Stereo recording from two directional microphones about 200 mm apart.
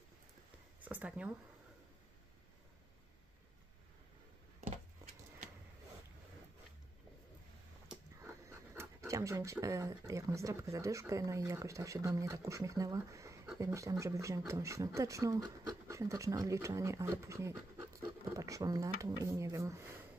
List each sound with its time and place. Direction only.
0.7 s speech: 10° right (ahead or behind)
7.9 s speech: 10° right (ahead or behind)